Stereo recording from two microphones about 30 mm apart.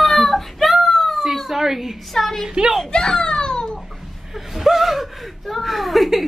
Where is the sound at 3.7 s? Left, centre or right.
Centre.